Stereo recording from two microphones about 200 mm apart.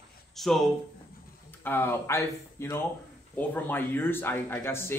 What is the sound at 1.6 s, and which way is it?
Speech, 10° left (ahead or behind).